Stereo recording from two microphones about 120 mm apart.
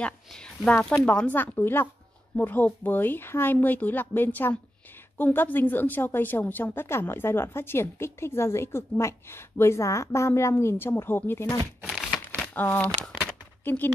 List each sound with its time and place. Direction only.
0.0 s a woman's voice: 10° left (ahead or behind)
11.8 s crumpling: centre (ahead or behind)
12.5 s speech: 15° left (ahead or behind)
13.2 s a sound: 15° left (ahead or behind)